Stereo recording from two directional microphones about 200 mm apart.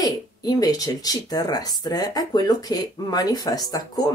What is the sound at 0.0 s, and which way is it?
Speech, 20° left (ahead or behind).